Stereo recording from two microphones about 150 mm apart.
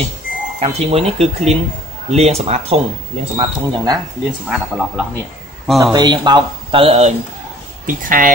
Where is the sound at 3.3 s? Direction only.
25° right (ahead or behind).